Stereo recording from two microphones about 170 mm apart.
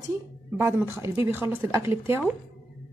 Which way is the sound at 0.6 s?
15° right (ahead or behind).